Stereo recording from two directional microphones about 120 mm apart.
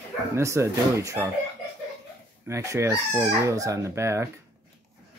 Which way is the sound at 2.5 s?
25° right (ahead or behind).